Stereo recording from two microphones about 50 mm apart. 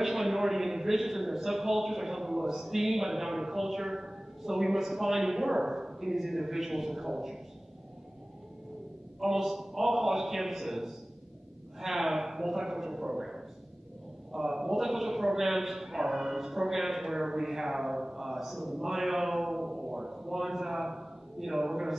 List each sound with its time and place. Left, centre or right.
0.0 s a man's voice: centre
9.2 s a man's voice: centre